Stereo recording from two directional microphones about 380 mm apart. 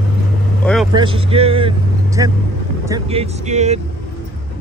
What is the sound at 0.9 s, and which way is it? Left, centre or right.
Speech, centre.